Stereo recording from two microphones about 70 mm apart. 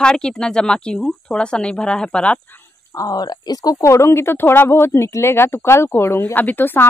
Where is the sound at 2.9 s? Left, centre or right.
Left.